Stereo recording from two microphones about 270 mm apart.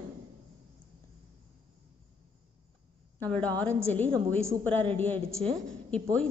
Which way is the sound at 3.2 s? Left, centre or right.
Centre.